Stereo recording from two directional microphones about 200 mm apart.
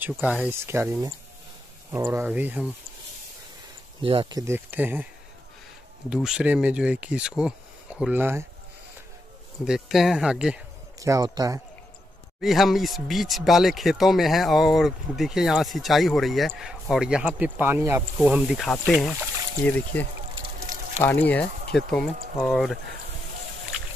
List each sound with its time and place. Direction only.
0.0 s speech: 5° right (ahead or behind)
4.0 s speech: 25° right (ahead or behind); by 5.0 s 10° right (ahead or behind)
6.0 s speech: 5° right (ahead or behind)
9.7 s speech: centre (ahead or behind)
11.0 s speech: 15° right (ahead or behind)
12.4 s speech: centre (ahead or behind)
21.0 s speech: 10° left (ahead or behind)